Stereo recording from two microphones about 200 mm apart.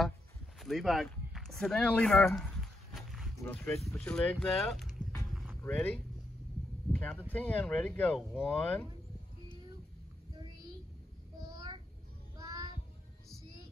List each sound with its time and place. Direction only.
0.6 s speech: centre (ahead or behind)
5.3 s a sound: centre (ahead or behind)
5.6 s speech: 10° left (ahead or behind)
11.5 s child singing: 20° right (ahead or behind)